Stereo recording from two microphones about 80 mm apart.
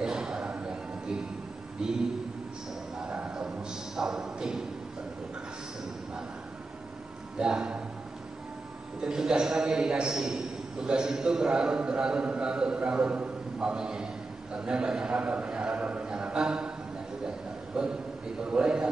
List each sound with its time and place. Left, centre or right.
0.0 s a sound: centre
1.8 s a man's voice: centre
3.0 s a sound: centre
7.3 s a man's voice: centre
9.0 s a man's voice: centre
17.8 s a man's voice: centre